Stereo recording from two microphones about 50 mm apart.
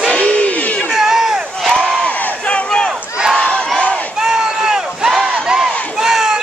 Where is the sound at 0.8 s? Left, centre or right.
Centre.